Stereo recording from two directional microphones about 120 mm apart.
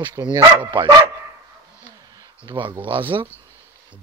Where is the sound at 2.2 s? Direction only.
40° right (ahead or behind).